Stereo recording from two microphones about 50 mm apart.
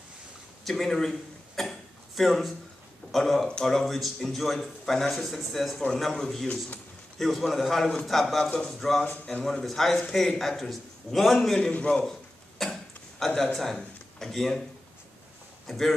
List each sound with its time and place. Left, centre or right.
0.7 s a man's voice: centre
6.4 s a man's voice: left
7.2 s a man's voice: centre
11.7 s a man's voice: left
12.0 s a sound: centre
13.2 s a man's voice: centre
15.6 s speech: centre